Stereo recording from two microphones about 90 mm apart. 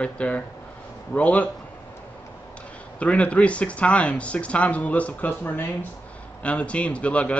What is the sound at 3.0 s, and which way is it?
Speech, 15° left (ahead or behind).